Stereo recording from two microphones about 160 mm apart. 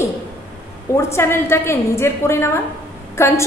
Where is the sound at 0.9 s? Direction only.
15° left (ahead or behind).